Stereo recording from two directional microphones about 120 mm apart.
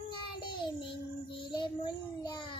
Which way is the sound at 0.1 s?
40° left (ahead or behind).